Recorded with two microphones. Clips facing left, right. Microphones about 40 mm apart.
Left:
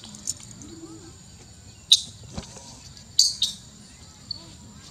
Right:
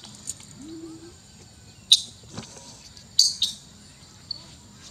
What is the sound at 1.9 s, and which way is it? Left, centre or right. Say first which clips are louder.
Vehicle: even; centre.